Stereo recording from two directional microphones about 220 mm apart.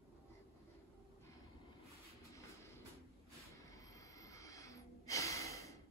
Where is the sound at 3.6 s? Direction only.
15° left (ahead or behind).